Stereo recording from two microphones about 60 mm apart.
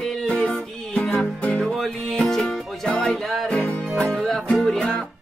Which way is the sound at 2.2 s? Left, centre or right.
Centre.